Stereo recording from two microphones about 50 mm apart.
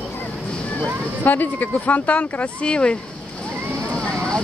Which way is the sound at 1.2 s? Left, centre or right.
Left.